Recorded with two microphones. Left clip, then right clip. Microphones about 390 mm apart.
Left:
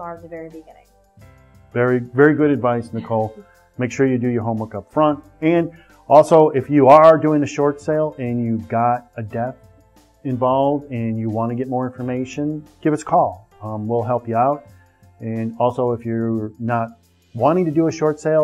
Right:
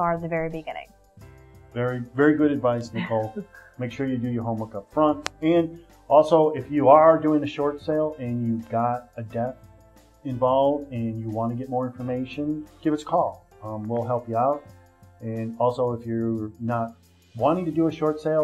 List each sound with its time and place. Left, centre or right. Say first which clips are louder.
0.0 s speech: right 7 dB; right
1.7 s speech: left 10 dB; left
2.1 s speech: left 5 dB; left